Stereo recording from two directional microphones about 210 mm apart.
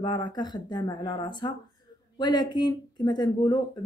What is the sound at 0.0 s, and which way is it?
Speech, 20° left (ahead or behind).